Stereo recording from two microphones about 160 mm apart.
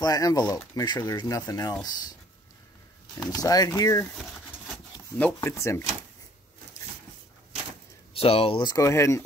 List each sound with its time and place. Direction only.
0.0 s speech: 20° left (ahead or behind)
3.2 s speech: 25° left (ahead or behind)
8.1 s speech: 35° left (ahead or behind); by 9.2 s 15° left (ahead or behind)